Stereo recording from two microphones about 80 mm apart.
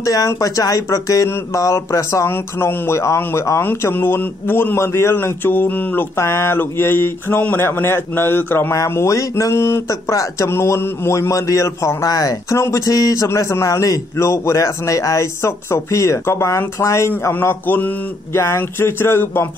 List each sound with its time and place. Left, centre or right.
0.0 s speech: left
8.7 s a man's voice: left